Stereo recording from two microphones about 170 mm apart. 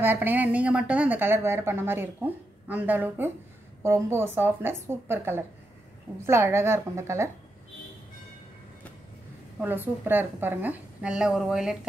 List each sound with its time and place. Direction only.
0.0 s a woman's voice: 10° right (ahead or behind)
9.6 s a woman's voice: 10° right (ahead or behind)